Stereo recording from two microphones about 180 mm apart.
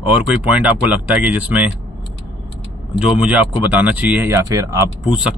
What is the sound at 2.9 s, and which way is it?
Speech, 5° right (ahead or behind).